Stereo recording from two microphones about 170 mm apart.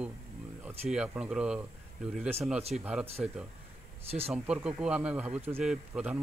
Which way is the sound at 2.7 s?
5° right (ahead or behind).